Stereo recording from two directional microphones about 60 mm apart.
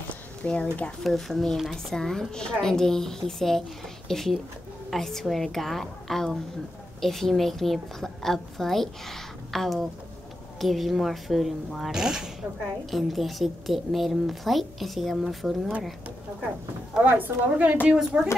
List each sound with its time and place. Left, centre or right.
0.4 s speech: centre
1.0 s a woman's voice: centre
17.0 s a woman's voice: right
17.8 s a woman's voice: centre